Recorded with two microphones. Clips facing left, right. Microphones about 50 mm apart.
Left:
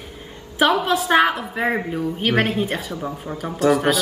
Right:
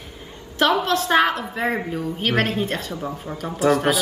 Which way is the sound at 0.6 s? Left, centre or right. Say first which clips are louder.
Left 1 dB; centre.